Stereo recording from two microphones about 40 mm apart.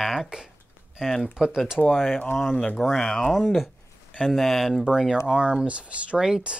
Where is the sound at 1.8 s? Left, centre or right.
Centre.